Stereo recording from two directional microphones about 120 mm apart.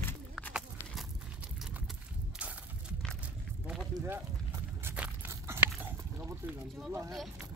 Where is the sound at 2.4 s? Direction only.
10° right (ahead or behind).